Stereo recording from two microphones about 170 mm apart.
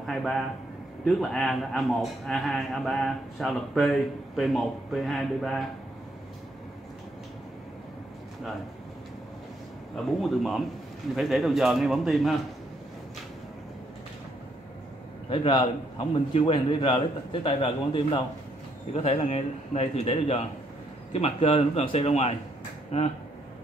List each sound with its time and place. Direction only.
0.0 s a sound: centre (ahead or behind)
1.0 s a man's voice: 5° left (ahead or behind)
10.2 s a man's voice: centre (ahead or behind)
15.2 s a man's voice: 30° left (ahead or behind)